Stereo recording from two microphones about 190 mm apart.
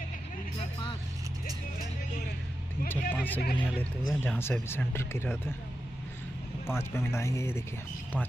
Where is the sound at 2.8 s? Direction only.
50° left (ahead or behind).